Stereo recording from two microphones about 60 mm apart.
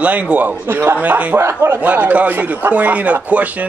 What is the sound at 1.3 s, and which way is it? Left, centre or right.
Speech, right.